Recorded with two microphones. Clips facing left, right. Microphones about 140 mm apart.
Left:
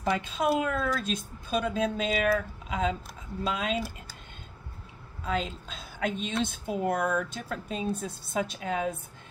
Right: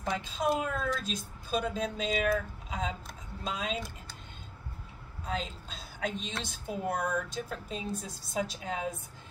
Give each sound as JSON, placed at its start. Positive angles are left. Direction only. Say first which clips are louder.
{"t": 0.0, "sound": "speech", "louder": "left 4 dB", "side_deg": 60}
{"t": 5.2, "sound": "speech", "louder": "left 5 dB", "side_deg": 55}